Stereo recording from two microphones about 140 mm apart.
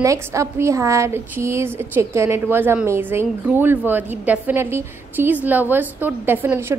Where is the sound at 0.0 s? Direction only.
20° right (ahead or behind).